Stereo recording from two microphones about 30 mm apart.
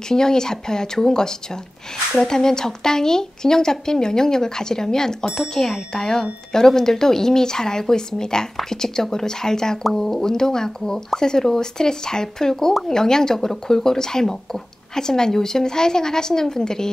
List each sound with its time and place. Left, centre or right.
0.1 s speech: left